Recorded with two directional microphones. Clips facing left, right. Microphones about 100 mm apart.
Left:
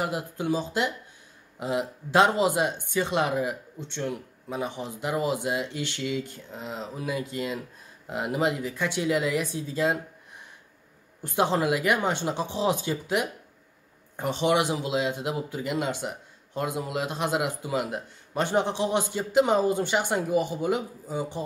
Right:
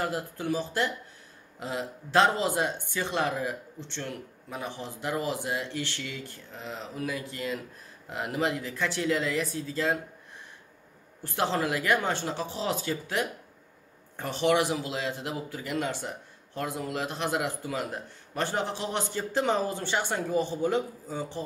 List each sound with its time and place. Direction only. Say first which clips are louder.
0.0 s speech: left 2 dB; 20° left (ahead or behind)
11.2 s speech: left 4 dB; 15° left (ahead or behind)